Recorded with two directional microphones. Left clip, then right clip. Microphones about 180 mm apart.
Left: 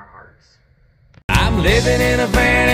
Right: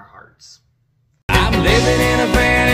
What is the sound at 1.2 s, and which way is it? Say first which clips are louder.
Music: right 2 dB; centre (ahead or behind).